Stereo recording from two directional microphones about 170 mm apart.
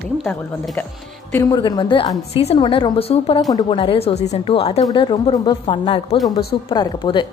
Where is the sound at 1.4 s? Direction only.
25° left (ahead or behind).